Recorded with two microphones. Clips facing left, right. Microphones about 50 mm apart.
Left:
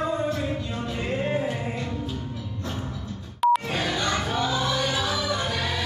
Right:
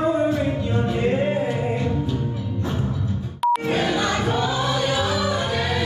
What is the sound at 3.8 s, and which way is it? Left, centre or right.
Music, centre.